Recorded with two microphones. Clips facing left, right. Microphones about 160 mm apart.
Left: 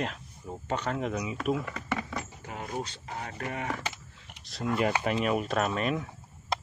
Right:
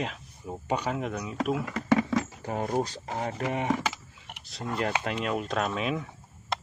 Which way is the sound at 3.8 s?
80° right.